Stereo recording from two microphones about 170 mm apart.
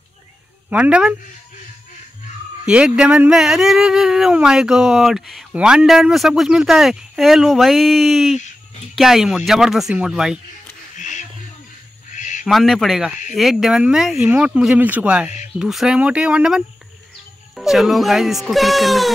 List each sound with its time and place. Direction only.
0.7 s speech: 5° right (ahead or behind)
2.6 s speech: 5° right (ahead or behind)
11.0 s a sound: 45° left (ahead or behind)
12.1 s owl: 45° left (ahead or behind)
12.4 s speech: centre (ahead or behind)